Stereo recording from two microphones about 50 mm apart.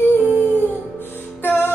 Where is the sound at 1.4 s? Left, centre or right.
Left.